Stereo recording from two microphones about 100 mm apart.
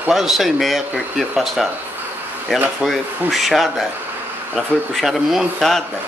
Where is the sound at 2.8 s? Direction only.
Centre (ahead or behind).